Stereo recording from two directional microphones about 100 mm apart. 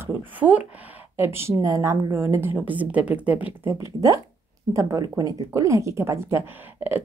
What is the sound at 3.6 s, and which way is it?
Speech, 30° right (ahead or behind).